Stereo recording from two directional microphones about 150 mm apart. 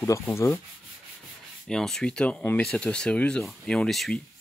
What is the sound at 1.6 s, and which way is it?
Speech, 5° left (ahead or behind).